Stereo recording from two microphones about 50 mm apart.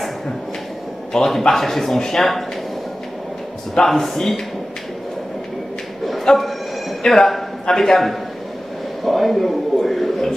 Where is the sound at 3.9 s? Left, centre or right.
Centre.